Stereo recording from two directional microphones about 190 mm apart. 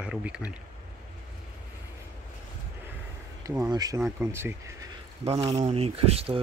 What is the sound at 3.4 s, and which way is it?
Speech, 15° right (ahead or behind).